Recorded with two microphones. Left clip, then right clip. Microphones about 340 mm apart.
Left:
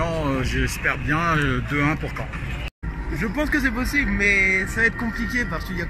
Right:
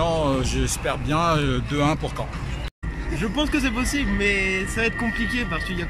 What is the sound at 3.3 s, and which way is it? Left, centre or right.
Speech, centre.